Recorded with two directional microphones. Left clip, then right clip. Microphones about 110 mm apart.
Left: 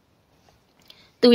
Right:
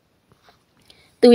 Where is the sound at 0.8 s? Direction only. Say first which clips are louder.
Right 4 dB; 25° right (ahead or behind).